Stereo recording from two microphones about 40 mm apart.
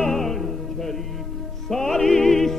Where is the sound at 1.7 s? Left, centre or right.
Centre.